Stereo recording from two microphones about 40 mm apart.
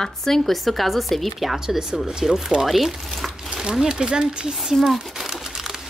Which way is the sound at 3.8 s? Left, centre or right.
Centre.